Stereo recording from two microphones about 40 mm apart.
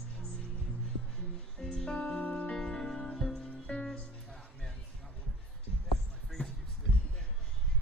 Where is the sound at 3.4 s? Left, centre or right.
Left.